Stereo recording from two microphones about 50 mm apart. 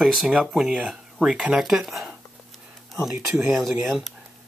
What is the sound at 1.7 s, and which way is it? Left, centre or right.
Speech, centre.